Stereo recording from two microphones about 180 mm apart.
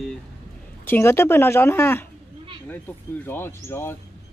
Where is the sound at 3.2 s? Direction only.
10° left (ahead or behind).